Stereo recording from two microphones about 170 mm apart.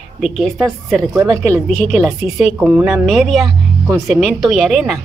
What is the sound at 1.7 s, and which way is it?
Speech, 5° left (ahead or behind).